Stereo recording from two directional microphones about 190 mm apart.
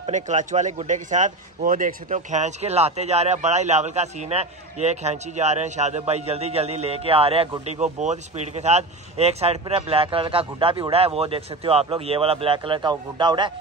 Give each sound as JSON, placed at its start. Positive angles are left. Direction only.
{"t": 0.0, "sound": "speech", "side_deg": -40}